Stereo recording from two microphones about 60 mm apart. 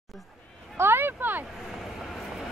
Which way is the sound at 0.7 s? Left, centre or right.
Right.